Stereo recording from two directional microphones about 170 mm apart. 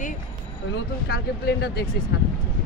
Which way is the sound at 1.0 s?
70° left (ahead or behind).